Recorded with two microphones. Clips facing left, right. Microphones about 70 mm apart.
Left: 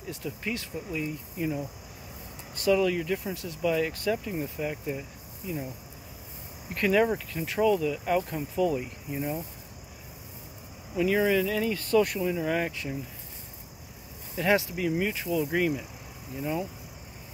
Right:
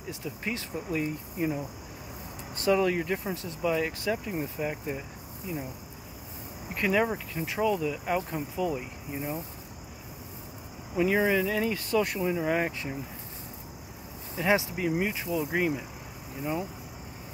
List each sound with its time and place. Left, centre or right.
0.4 s speech: right
2.5 s speech: right
6.7 s speech: centre
8.7 s speech: centre
11.0 s speech: centre
14.3 s speech: centre